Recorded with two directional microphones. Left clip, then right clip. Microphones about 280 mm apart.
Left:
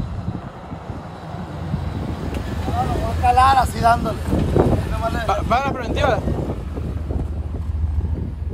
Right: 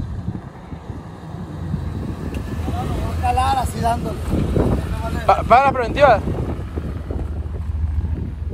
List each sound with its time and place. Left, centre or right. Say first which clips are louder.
1.6 s vehicle: left 2 dB; centre
2.2 s vehicle: left 2 dB; centre
5.9 s speech: right 7 dB; centre